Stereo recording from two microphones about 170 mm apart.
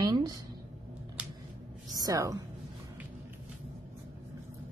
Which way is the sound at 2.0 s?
20° right (ahead or behind).